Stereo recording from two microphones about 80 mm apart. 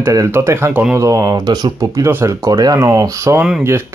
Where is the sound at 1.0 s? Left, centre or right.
Right.